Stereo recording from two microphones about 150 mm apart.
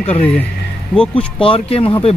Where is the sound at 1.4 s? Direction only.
35° left (ahead or behind).